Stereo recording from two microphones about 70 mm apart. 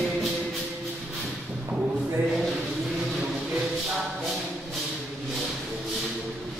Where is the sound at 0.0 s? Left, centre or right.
Centre.